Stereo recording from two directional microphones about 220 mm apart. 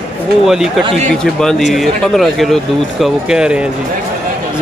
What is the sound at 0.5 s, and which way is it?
Speech, centre (ahead or behind).